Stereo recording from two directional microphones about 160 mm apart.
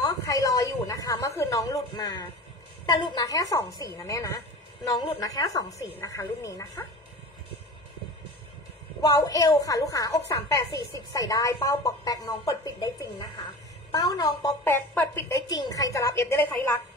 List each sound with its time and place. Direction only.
0.0 s a sound: 20° left (ahead or behind)
2.9 s a woman's voice: 25° left (ahead or behind)
9.0 s a woman's voice: 20° left (ahead or behind)
14.6 s a woman's voice: 10° left (ahead or behind)